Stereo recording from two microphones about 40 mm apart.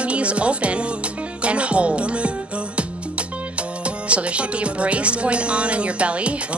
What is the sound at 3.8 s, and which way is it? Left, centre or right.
Speech, right.